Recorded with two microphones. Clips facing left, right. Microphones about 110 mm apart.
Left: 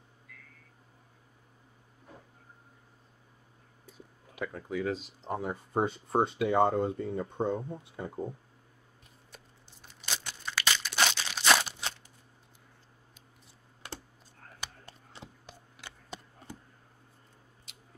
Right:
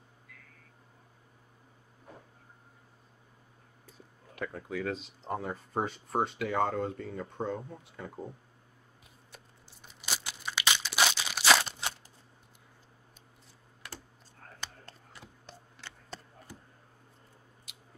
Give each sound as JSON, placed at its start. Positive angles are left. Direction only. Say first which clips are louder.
{"t": 4.4, "sound": "speech", "louder": "left 2 dB", "side_deg": 0}
{"t": 5.4, "sound": "speech", "louder": "left 5 dB", "side_deg": 15}
{"t": 10.0, "sound": "a sound", "louder": "right 1 dB", "side_deg": -10}
{"t": 10.5, "sound": "crumpling", "louder": "even", "side_deg": -20}
{"t": 15.4, "sound": "a sound", "louder": "even", "side_deg": 15}
{"t": 17.7, "sound": "biting", "louder": "even", "side_deg": 0}